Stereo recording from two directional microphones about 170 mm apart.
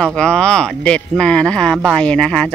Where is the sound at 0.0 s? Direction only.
5° left (ahead or behind).